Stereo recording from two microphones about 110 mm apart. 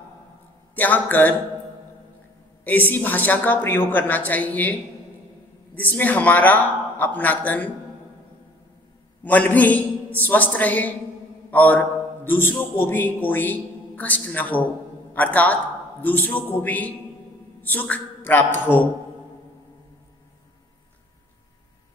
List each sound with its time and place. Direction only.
0.7 s a man's voice: 15° left (ahead or behind)
2.6 s a man's voice: 15° left (ahead or behind)
5.8 s a man's voice: 15° left (ahead or behind)
9.2 s a man's voice: 15° left (ahead or behind)